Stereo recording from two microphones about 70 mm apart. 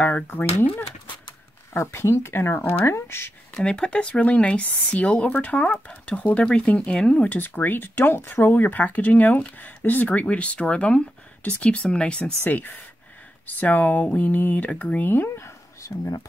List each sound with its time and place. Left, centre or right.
0.0 s speech: left
1.7 s speech: left
3.5 s speech: centre
7.2 s speech: left
15.3 s a sound: left